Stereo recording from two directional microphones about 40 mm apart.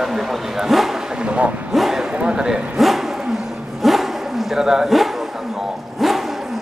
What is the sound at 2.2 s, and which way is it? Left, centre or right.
Speech, right.